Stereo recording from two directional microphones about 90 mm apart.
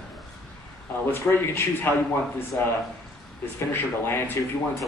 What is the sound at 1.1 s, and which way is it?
Speech, 25° left (ahead or behind).